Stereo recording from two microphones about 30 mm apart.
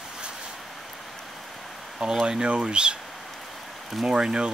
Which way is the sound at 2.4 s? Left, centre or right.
Right.